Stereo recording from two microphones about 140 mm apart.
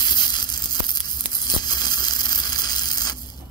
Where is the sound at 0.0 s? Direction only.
30° left (ahead or behind).